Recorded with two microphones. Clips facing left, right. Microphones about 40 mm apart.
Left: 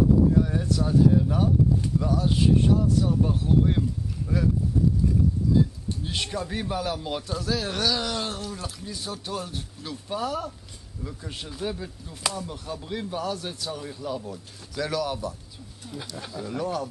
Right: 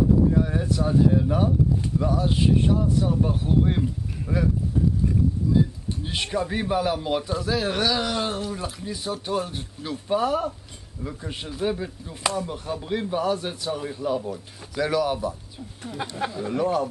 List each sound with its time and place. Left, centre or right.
0.3 s speech: centre
6.0 s speech: centre
16.0 s speech: right
16.5 s speech: right